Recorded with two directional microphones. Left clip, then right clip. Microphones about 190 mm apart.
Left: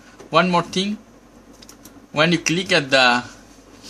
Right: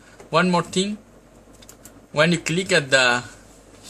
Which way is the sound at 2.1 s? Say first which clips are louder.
Left 2 dB; 5° right (ahead or behind).